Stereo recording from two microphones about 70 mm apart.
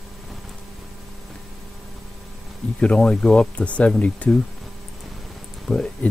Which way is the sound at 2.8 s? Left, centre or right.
Centre.